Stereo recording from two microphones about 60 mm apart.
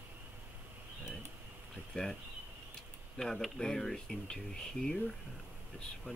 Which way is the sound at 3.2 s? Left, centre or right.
Centre.